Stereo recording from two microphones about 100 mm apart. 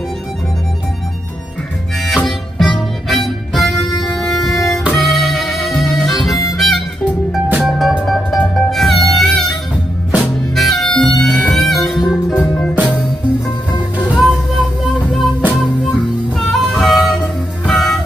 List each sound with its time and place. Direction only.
2.0 s music: centre (ahead or behind)
3.3 s harmonica: centre (ahead or behind)
7.5 s music: 5° right (ahead or behind)
12.4 s music: 10° left (ahead or behind)
13.7 s music: 45° left (ahead or behind)
14.0 s music: 5° right (ahead or behind)
15.0 s music: 5° left (ahead or behind)